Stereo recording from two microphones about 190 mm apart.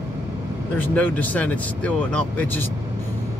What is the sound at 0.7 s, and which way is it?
Speech, 10° left (ahead or behind).